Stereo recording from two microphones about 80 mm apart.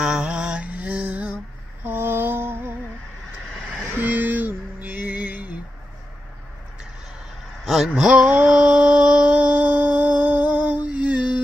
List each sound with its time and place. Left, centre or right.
0.0 s mantra: centre
1.9 s music: right
4.0 s a sound: right
7.6 s mantra: centre